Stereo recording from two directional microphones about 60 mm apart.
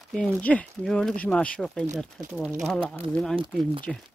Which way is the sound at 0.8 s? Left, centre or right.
Centre.